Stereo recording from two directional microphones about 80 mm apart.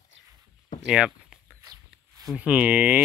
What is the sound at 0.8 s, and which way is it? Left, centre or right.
Speech, centre.